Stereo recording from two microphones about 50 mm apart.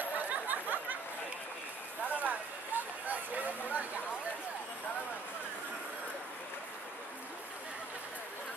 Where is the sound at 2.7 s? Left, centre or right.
Right.